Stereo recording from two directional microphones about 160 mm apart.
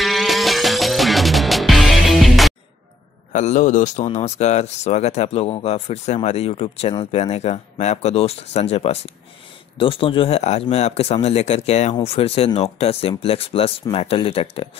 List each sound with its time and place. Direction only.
0.0 s music: centre (ahead or behind)
3.3 s speech: 50° left (ahead or behind)